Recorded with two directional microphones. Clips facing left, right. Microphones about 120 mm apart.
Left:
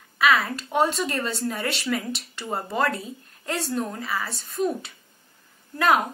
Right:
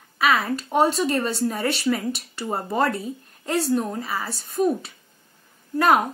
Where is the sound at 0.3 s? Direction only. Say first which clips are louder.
Right 2 dB; centre (ahead or behind).